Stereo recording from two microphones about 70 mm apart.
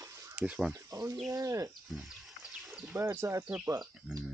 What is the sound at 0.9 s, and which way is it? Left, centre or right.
Speech, right.